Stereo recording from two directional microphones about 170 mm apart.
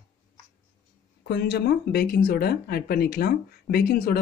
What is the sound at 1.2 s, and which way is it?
Speech, 75° left (ahead or behind).